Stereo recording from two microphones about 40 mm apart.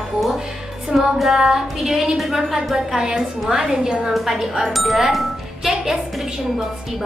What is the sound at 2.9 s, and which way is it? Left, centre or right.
A woman's voice, centre.